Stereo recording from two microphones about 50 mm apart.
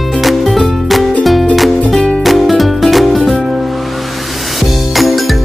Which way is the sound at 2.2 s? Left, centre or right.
Centre.